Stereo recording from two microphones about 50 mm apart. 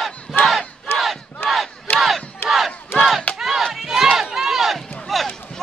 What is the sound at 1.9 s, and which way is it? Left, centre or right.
Battle cry, centre.